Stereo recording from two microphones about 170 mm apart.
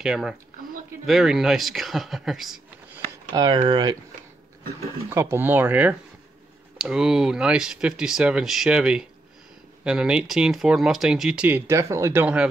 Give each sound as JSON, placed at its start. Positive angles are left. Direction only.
{"t": 0.0, "sound": "speech", "side_deg": -5}
{"t": 3.3, "sound": "speech", "side_deg": -25}
{"t": 5.1, "sound": "speech", "side_deg": -15}